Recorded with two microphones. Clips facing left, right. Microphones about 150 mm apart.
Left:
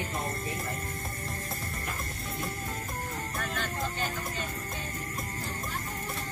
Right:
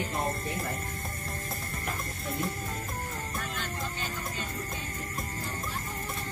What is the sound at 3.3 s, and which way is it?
Music, 50° left (ahead or behind).